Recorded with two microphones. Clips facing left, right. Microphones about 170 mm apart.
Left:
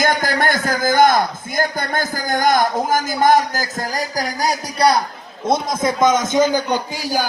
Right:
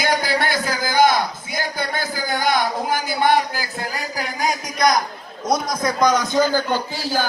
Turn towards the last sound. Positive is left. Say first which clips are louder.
# left 1 dB
turn(degrees=15)  # may be behind; listen again after turning